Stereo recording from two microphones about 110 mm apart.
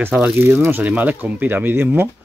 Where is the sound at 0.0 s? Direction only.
10° right (ahead or behind).